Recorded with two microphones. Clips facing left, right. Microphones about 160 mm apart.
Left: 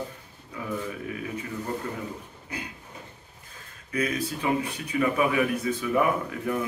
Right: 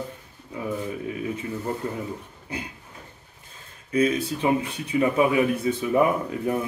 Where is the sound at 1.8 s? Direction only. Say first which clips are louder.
Right 4 dB; 30° right (ahead or behind).